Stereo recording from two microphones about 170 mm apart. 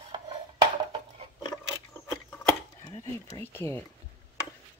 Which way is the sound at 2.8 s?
20° left (ahead or behind).